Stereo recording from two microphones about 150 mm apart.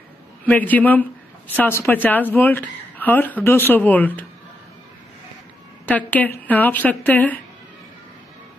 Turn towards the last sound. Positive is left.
turn(degrees=10)  # may be behind; listen again after turning